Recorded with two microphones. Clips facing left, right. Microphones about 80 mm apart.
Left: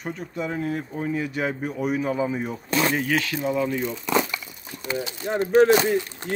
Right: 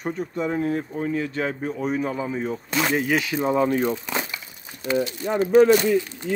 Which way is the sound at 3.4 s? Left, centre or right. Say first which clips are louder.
Right 4 dB; right.